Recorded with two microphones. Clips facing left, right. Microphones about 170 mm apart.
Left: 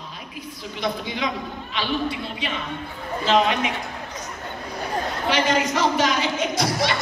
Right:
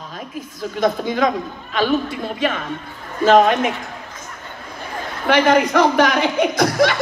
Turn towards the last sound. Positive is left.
turn(degrees=-55)  # may be behind; listen again after turning